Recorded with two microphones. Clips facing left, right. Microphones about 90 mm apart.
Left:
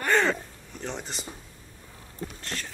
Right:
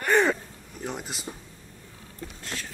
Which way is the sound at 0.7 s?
5° right (ahead or behind).